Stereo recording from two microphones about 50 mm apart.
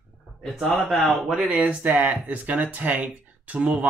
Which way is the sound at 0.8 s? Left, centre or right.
Centre.